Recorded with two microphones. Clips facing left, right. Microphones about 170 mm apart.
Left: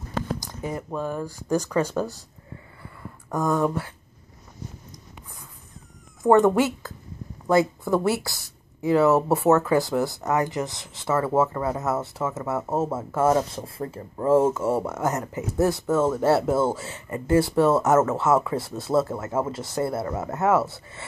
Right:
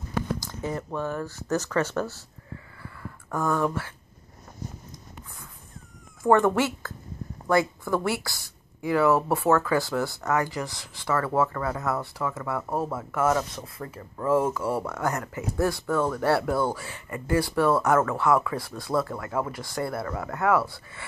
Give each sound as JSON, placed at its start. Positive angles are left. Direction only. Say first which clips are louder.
{"t": 0.4, "sound": "speech", "louder": "even", "side_deg": 15}
{"t": 2.8, "sound": "a sound", "louder": "even", "side_deg": 20}
{"t": 6.2, "sound": "speech", "louder": "left 3 dB", "side_deg": 20}